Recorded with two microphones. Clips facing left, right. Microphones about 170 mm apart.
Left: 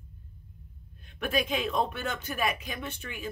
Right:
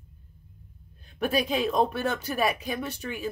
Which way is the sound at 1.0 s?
35° right (ahead or behind).